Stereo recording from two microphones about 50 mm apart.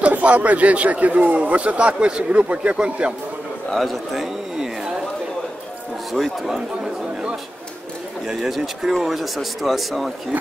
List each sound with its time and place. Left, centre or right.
0.0 s speech: right
3.7 s speech: centre
6.1 s speech: centre
6.5 s chatter: centre
8.4 s speech: centre